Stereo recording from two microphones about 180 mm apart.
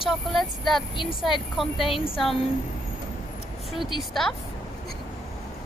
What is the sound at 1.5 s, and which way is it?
Speech, centre (ahead or behind).